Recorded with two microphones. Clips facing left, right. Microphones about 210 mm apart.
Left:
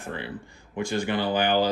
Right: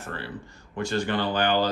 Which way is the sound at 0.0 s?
15° left (ahead or behind).